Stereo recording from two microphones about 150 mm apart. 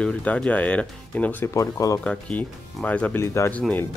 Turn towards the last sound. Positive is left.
turn(degrees=10)  # may be behind; listen again after turning